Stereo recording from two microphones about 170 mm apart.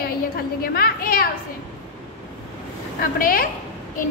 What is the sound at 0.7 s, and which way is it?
Speech, 60° left (ahead or behind).